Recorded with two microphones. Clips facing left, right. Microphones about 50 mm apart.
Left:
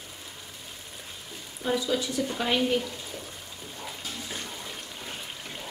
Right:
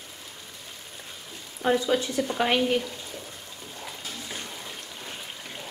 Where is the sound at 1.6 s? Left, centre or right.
Right.